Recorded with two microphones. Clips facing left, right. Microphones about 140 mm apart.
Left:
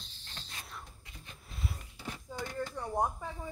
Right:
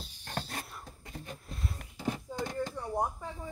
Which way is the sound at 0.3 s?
50° right (ahead or behind).